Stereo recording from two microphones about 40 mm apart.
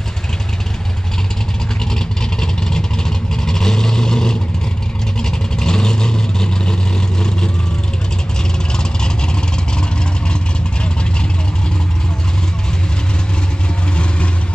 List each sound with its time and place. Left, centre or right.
2.4 s vehicle: centre
8.7 s vehicle: left